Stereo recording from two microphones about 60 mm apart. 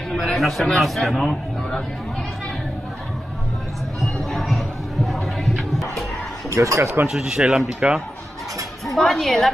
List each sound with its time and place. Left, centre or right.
0.1 s a man's voice: centre
4.0 s music: centre
6.5 s speech: right
7.1 s speech: centre
8.8 s a man's voice: centre